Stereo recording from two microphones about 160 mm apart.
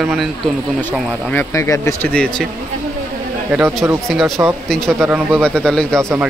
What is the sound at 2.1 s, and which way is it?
Speech, 5° left (ahead or behind).